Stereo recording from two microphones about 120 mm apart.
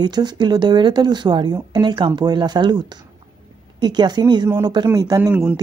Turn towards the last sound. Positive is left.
turn(degrees=-15)  # may be behind; listen again after turning